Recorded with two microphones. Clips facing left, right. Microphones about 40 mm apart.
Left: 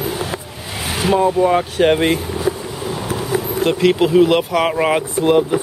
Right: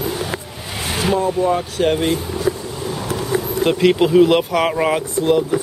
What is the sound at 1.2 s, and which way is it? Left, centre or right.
Speech, left.